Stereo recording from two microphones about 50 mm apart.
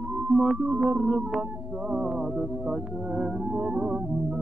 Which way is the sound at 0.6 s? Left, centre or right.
Right.